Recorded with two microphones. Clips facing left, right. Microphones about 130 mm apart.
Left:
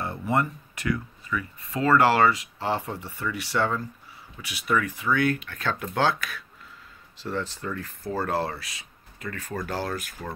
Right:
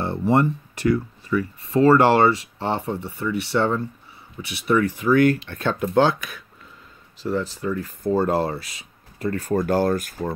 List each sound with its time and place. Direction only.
0.0 s speech: 30° right (ahead or behind)
9.2 s speech: 40° right (ahead or behind)